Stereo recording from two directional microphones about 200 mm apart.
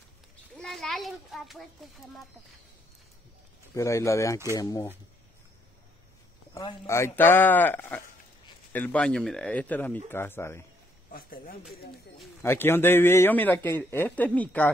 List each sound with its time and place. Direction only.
0.6 s a child's voice: centre (ahead or behind)
3.7 s a man's voice: 15° left (ahead or behind)
6.5 s a man's voice: 15° left (ahead or behind)
11.1 s speech: 45° left (ahead or behind)
12.2 s a man's voice: 10° left (ahead or behind)